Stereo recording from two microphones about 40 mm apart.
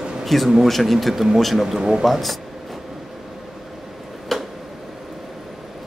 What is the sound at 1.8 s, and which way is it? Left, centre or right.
Speech, centre.